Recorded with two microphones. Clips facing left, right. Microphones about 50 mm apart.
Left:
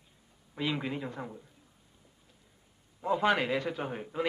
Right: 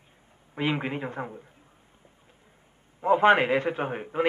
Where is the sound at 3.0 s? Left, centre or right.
Right.